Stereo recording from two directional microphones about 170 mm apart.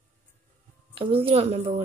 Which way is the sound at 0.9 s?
30° right (ahead or behind).